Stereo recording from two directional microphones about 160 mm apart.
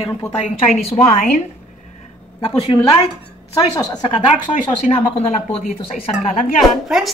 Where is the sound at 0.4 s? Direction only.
40° left (ahead or behind).